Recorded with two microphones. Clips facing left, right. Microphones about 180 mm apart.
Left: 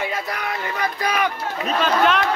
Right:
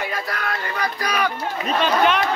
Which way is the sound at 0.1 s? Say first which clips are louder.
Even; 20° left (ahead or behind).